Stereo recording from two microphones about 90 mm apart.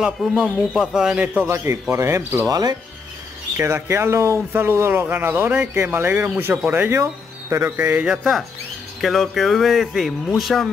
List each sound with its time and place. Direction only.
0.0 s a man's voice: 10° right (ahead or behind)
1.5 s speech: 30° right (ahead or behind)
3.5 s speech: 30° right (ahead or behind)
8.1 s speech: 5° right (ahead or behind)